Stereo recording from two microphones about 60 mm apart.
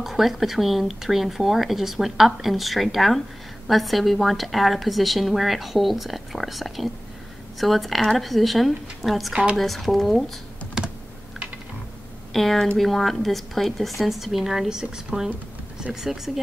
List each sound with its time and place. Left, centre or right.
0.0 s a woman's voice: centre
9.3 s speech: centre
9.6 s a woman's voice: centre
10.8 s computer keyboard: centre
12.3 s a woman's voice: centre